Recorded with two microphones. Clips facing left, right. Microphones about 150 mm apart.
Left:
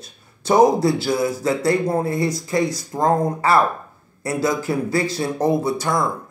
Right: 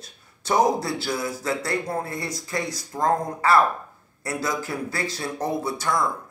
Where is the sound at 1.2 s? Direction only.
10° left (ahead or behind); by 4.7 s 25° left (ahead or behind).